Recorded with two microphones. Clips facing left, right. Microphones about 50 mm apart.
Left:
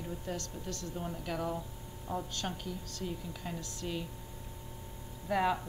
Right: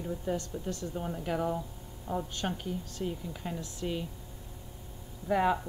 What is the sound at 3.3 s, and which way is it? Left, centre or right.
Cutlery, centre.